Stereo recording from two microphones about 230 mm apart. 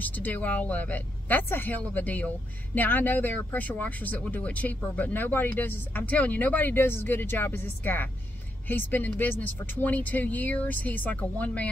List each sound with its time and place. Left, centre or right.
0.0 s speech: centre